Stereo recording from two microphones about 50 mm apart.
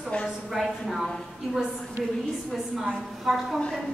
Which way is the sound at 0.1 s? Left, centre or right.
Left.